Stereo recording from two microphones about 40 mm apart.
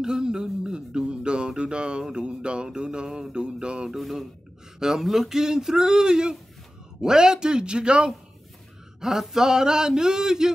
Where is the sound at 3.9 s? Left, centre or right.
Centre.